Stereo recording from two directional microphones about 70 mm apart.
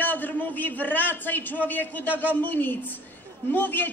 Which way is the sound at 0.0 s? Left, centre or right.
Left.